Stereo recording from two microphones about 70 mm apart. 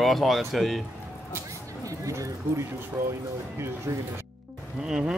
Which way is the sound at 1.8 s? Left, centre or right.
Right.